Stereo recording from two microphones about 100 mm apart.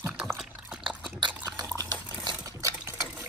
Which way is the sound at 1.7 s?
45° right (ahead or behind).